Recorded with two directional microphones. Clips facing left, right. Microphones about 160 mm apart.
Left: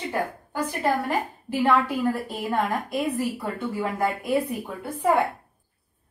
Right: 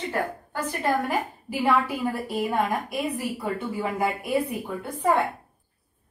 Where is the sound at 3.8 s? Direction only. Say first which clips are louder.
Left 1 dB; 10° right (ahead or behind).